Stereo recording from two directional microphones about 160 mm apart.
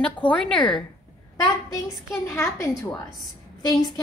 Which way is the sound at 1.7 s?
15° left (ahead or behind).